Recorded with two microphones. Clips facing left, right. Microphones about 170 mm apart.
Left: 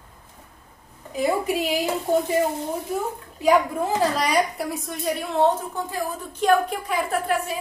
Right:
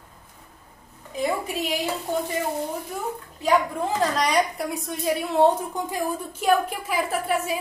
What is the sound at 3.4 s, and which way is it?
A woman's voice, 5° left (ahead or behind).